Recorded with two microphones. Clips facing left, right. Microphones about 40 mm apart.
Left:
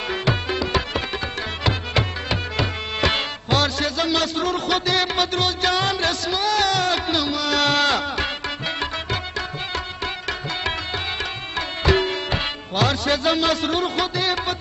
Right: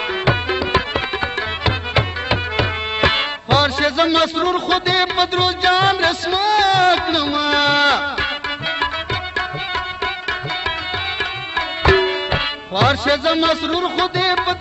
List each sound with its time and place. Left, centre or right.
0.2 s music: right
11.5 s music: right